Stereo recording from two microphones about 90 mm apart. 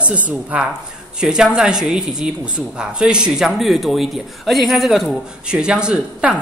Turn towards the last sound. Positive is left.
turn(degrees=-10)  # may be behind; listen again after turning